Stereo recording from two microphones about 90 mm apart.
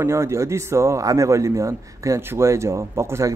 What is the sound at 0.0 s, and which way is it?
A man's voice, 30° right (ahead or behind).